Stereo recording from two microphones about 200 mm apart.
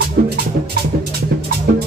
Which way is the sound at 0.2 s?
45° right (ahead or behind).